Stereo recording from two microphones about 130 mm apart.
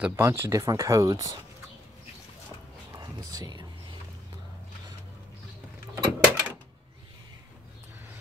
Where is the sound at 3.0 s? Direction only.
30° right (ahead or behind).